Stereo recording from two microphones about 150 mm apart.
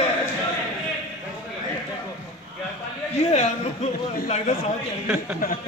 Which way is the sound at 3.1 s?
45° left (ahead or behind).